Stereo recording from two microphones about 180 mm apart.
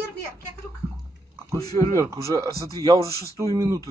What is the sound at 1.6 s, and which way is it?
Speech, 20° left (ahead or behind).